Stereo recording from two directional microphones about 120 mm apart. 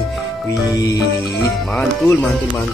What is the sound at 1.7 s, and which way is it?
Speech, 10° left (ahead or behind).